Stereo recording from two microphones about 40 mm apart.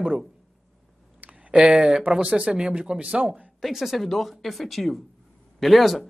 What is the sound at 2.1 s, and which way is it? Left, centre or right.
Speech, right.